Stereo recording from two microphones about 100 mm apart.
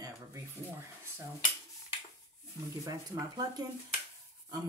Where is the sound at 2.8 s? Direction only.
35° right (ahead or behind).